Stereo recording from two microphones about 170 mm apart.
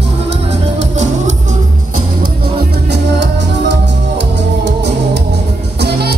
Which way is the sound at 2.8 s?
85° right.